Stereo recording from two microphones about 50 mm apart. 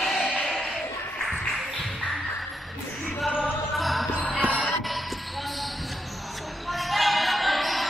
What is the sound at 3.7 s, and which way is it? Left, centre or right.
Music, centre.